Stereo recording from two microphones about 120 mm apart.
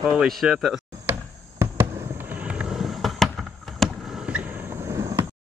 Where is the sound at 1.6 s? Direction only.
20° right (ahead or behind); by 3.3 s centre (ahead or behind).